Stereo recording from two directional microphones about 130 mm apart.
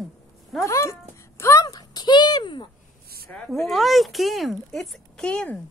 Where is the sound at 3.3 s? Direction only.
Centre (ahead or behind).